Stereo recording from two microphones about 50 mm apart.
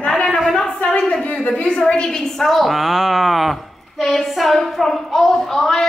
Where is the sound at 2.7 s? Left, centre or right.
Centre.